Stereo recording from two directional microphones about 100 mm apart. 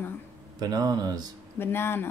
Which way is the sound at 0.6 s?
40° right (ahead or behind).